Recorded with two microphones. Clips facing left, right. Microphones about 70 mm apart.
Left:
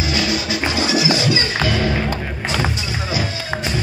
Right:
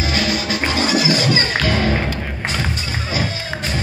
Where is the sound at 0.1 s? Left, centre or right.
Right.